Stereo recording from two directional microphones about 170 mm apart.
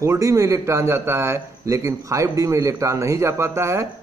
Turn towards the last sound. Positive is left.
turn(degrees=-15)  # may be behind; listen again after turning